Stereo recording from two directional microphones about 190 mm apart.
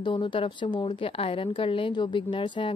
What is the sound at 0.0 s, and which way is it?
A woman's voice, 25° left (ahead or behind).